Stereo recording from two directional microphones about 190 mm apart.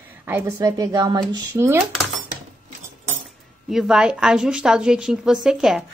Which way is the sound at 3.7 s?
5° right (ahead or behind).